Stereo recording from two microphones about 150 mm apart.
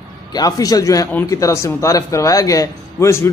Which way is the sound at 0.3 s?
25° left (ahead or behind).